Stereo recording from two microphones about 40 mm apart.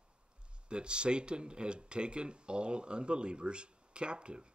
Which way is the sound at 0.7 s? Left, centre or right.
Right.